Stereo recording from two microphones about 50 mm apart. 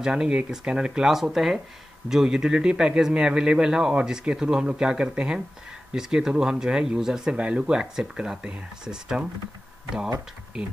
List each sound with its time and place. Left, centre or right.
0.0 s speech: centre
7.3 s speech: right